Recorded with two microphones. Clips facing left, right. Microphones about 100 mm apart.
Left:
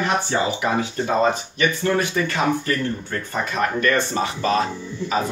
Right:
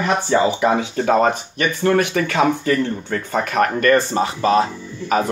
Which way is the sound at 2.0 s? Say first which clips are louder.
Right 4 dB; 80° right.